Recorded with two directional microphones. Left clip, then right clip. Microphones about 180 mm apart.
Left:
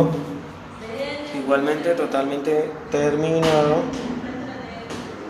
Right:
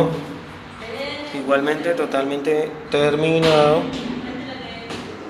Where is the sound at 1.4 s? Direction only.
5° right (ahead or behind).